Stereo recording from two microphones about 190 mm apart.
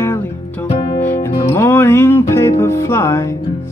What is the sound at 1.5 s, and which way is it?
Music, 10° left (ahead or behind).